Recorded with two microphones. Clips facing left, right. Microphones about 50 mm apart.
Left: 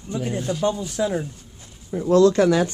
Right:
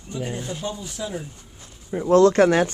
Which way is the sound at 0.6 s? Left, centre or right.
Left.